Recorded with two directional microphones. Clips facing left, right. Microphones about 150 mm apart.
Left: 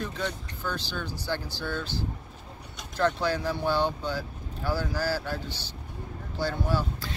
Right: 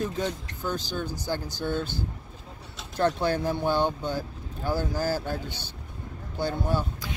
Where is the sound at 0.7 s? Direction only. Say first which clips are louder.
Right 3 dB; 45° right (ahead or behind).